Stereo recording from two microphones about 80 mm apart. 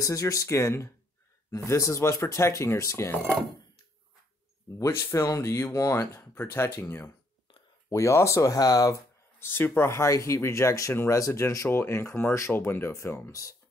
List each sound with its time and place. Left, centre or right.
0.0 s speech: left
4.7 s speech: left
9.4 s speech: left